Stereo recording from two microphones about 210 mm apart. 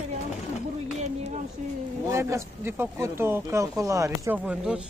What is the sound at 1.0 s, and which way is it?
Speech, 30° right (ahead or behind).